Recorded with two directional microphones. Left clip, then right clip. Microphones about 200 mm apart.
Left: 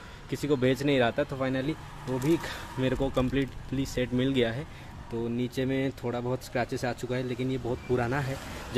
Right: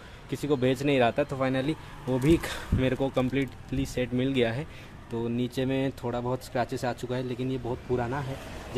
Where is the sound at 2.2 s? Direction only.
25° right (ahead or behind).